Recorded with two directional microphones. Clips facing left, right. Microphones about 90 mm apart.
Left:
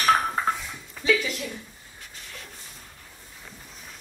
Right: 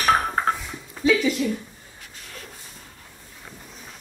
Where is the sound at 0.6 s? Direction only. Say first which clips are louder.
Right 11 dB; 5° right (ahead or behind).